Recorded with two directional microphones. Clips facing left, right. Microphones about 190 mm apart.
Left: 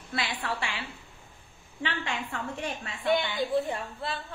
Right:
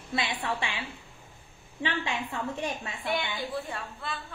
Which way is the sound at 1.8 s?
20° right (ahead or behind).